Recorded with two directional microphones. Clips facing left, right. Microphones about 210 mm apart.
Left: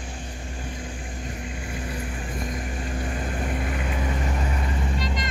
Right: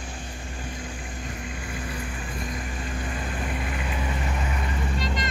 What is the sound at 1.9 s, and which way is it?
Vehicle, 40° left (ahead or behind).